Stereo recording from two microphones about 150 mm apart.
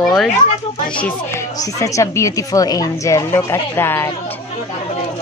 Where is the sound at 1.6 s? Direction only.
20° left (ahead or behind).